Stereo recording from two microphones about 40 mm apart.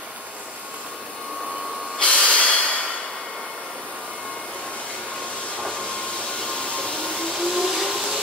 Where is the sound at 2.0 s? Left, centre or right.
Left.